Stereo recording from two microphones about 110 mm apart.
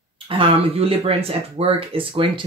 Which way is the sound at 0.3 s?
55° right (ahead or behind).